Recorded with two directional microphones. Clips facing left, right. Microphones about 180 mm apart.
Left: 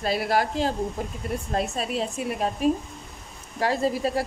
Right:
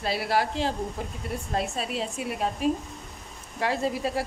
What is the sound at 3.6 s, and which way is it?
Speech, 40° left (ahead or behind).